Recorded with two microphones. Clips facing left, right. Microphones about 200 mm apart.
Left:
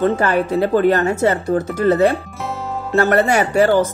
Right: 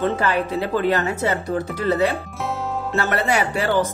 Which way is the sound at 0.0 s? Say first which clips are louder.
Left 4 dB; 45° left (ahead or behind).